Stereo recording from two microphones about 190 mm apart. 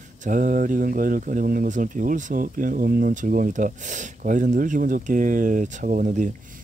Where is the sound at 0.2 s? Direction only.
45° right (ahead or behind).